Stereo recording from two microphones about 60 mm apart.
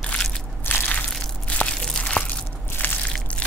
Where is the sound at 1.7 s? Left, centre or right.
Centre.